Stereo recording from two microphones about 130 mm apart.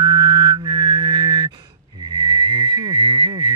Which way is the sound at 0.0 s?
35° right (ahead or behind).